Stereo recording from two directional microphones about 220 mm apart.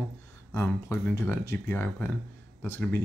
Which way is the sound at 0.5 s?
10° left (ahead or behind).